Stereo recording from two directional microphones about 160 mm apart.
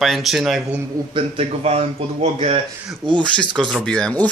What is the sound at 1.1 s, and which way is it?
A man's voice, 40° right (ahead or behind).